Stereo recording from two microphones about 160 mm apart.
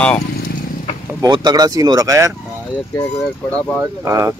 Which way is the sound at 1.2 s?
25° right (ahead or behind).